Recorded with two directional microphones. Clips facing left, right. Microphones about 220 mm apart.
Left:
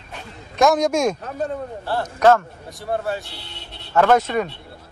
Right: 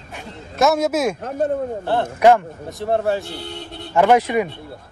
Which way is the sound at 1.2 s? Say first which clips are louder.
Right 5 dB; 50° right (ahead or behind).